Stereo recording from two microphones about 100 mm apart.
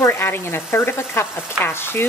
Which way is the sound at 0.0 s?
25° left (ahead or behind).